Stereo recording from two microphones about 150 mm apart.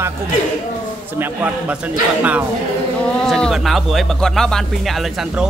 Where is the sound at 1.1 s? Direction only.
10° right (ahead or behind).